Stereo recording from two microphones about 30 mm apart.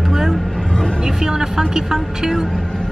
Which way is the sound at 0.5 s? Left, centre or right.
Left.